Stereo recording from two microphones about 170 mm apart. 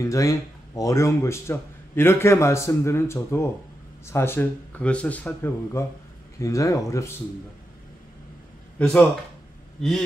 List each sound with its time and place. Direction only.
0.0 s speech: 20° left (ahead or behind)
8.7 s a man's voice: 10° left (ahead or behind)